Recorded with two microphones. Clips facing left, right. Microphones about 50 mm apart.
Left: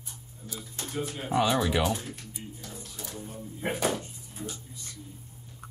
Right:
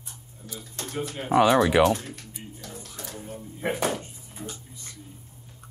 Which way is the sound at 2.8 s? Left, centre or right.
Right.